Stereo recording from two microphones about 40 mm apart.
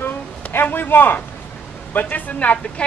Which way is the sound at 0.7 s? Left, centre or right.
Left.